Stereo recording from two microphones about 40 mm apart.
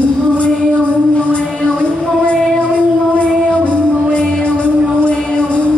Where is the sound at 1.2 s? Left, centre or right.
Left.